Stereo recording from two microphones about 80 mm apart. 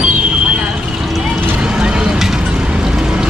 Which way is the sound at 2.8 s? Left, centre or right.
Centre.